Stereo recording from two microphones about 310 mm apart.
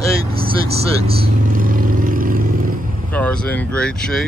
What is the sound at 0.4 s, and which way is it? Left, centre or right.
Vehicle, centre.